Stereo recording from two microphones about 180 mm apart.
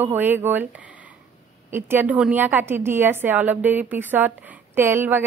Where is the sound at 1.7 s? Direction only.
10° right (ahead or behind).